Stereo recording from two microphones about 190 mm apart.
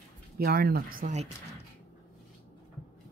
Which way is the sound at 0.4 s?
55° right (ahead or behind).